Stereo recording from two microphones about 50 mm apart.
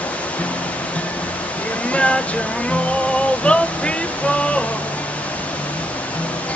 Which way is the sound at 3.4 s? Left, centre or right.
Left.